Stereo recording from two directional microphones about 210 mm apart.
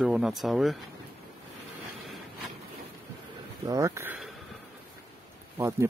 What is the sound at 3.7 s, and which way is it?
Speech, 15° right (ahead or behind).